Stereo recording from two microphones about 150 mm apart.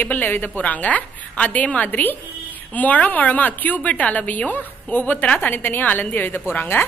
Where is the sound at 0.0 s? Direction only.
10° left (ahead or behind).